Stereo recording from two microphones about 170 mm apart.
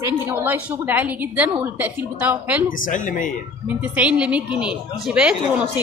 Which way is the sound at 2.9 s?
50° left (ahead or behind).